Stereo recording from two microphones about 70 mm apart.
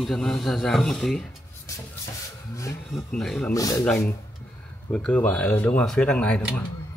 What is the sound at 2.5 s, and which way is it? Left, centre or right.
Speech, left.